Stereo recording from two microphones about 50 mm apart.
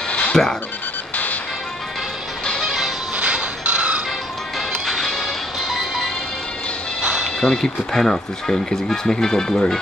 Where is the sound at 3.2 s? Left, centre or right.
Right.